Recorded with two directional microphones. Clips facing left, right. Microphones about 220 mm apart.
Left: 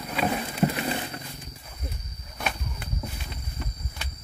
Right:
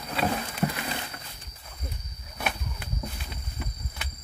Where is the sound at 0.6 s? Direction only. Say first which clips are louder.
Left 5 dB; 25° left (ahead or behind).